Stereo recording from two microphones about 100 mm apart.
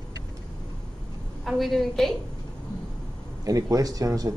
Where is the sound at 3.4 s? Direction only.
35° right (ahead or behind).